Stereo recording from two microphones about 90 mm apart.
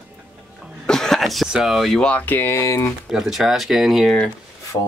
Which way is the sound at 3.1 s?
5° right (ahead or behind).